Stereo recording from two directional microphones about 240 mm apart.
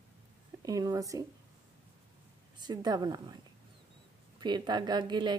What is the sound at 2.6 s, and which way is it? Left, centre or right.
Speech, centre.